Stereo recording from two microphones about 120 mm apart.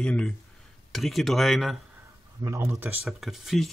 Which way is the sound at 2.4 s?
20° right (ahead or behind).